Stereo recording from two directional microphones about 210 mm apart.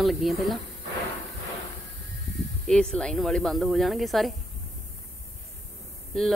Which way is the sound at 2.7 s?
5° left (ahead or behind).